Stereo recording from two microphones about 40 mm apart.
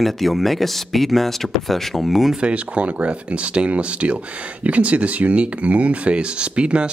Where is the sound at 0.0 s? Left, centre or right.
Centre.